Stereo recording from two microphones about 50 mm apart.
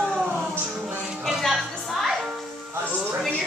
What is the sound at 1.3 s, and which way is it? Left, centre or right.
Music, centre.